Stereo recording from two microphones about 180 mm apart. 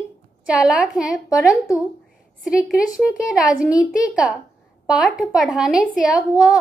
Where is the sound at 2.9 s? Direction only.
20° left (ahead or behind).